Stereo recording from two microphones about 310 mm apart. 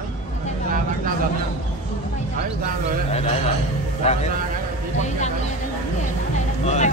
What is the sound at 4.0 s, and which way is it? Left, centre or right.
Speech, left.